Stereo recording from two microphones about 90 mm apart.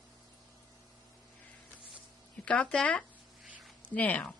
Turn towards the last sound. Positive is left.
turn(degrees=15)  # may be behind; listen again after turning